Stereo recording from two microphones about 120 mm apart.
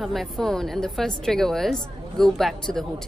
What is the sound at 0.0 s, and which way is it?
Speech, centre (ahead or behind).